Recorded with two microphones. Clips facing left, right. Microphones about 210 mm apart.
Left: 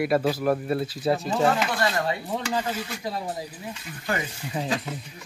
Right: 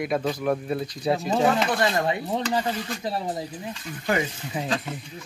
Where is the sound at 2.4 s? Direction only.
10° left (ahead or behind).